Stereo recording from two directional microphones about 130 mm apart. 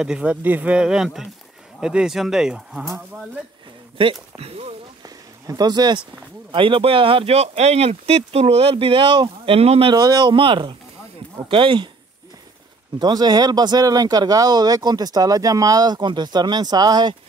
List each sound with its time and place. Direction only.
0.0 s speech: 5° right (ahead or behind)
4.0 s speech: 45° right (ahead or behind)
5.0 s a sound: 30° right (ahead or behind)
6.5 s speech: 40° right (ahead or behind)
9.6 s speech: 50° right (ahead or behind)
9.9 s speech: 30° right (ahead or behind)
13.0 s speech: 30° right (ahead or behind)